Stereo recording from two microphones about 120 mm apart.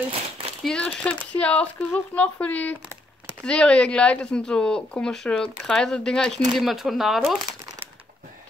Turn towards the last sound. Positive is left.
turn(degrees=0)  # may be behind; listen again after turning